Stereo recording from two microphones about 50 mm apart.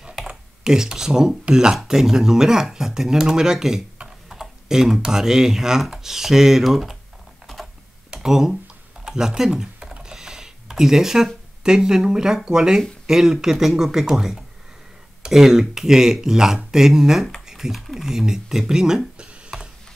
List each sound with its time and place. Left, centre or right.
0.3 s speech: centre
8.1 s speech: centre
9.8 s typing: centre
11.6 s speech: centre
19.1 s computer keyboard: centre